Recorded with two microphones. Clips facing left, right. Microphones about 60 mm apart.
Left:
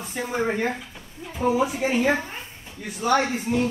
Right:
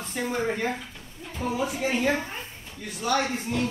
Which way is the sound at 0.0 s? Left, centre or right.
Centre.